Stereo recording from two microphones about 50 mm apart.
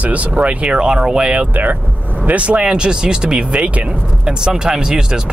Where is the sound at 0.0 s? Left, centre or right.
Right.